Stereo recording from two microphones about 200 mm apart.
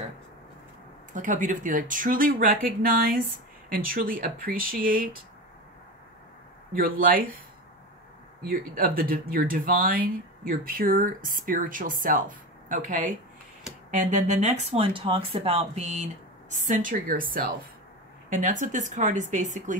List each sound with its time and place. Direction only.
1.1 s speech: 40° right (ahead or behind)
6.7 s speech: 45° right (ahead or behind)
8.5 s speech: 45° right (ahead or behind)